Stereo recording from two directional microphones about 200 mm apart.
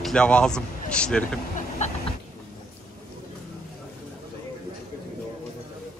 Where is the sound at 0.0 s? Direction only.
5° left (ahead or behind).